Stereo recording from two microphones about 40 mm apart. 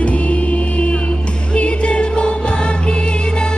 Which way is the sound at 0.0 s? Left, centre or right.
Left.